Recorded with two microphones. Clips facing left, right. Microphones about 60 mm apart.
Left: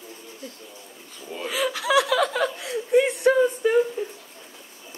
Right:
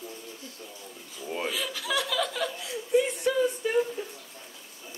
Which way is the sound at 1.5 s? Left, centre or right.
Left.